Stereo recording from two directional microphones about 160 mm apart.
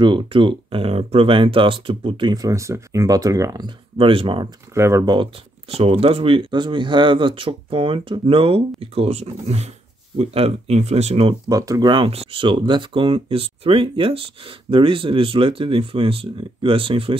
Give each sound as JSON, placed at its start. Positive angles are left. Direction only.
{"t": 0.0, "sound": "speech", "side_deg": -30}
{"t": 4.7, "sound": "speech", "side_deg": -15}
{"t": 5.0, "sound": "speech", "side_deg": -30}
{"t": 11.4, "sound": "speech", "side_deg": -20}